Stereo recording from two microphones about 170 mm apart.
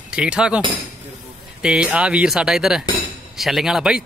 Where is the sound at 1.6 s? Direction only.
5° right (ahead or behind).